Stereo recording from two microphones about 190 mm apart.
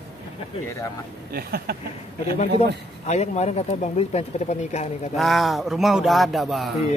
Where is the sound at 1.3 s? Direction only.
55° right (ahead or behind).